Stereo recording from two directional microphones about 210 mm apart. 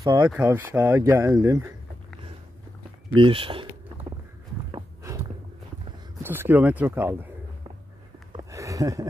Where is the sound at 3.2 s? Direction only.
25° right (ahead or behind).